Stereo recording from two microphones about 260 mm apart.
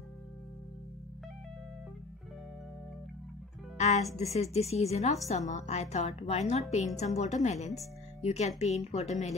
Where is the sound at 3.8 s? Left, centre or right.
Left.